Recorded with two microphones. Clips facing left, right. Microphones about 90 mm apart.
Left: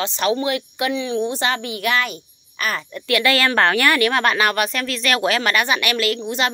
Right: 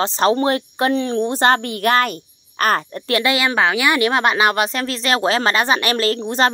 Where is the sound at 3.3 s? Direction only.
10° right (ahead or behind).